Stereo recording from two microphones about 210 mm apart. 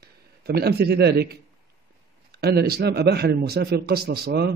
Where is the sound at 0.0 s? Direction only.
50° right (ahead or behind).